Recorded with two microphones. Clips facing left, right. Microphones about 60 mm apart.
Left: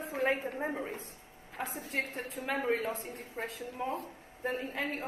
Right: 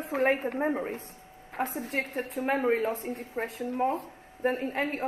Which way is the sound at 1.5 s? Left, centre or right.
Right.